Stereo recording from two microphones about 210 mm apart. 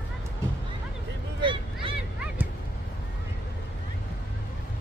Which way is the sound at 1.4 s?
25° right (ahead or behind).